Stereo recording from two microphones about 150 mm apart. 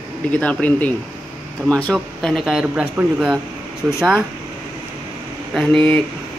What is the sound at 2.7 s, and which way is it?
Speech, 10° right (ahead or behind).